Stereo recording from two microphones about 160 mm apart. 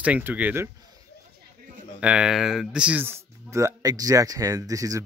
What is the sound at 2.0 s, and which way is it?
Speech, 5° right (ahead or behind).